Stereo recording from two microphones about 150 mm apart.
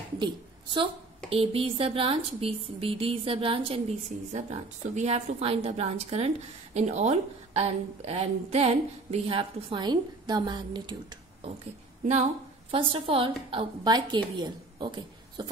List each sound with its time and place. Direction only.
0.2 s a woman's voice: 30° right (ahead or behind)
12.7 s speech: 35° right (ahead or behind)